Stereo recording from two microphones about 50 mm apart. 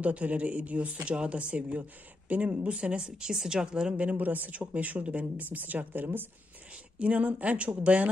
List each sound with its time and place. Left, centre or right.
0.0 s speech: right
3.9 s speech: right
7.0 s speech: right